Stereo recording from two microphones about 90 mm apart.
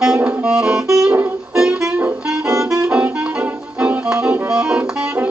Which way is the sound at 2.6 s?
10° right (ahead or behind).